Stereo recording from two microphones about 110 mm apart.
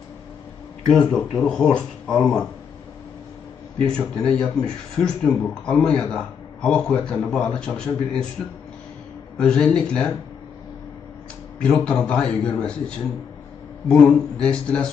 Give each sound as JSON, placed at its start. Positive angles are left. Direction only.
{"t": 0.8, "sound": "speech", "side_deg": 5}
{"t": 3.7, "sound": "speech", "side_deg": 5}
{"t": 9.4, "sound": "speech", "side_deg": 5}
{"t": 11.6, "sound": "speech", "side_deg": 10}